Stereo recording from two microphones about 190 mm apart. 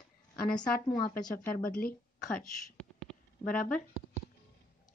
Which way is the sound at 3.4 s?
45° left (ahead or behind).